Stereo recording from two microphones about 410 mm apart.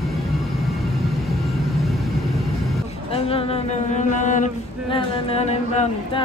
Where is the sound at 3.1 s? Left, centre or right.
Centre.